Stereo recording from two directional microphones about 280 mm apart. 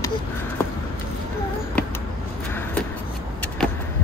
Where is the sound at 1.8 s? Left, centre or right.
Centre.